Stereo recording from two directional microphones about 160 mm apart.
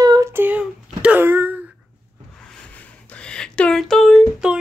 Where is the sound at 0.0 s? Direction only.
20° right (ahead or behind).